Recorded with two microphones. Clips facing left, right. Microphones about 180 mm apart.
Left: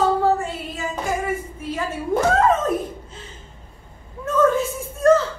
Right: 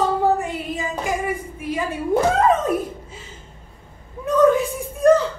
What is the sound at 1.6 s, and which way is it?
Speech, 15° right (ahead or behind).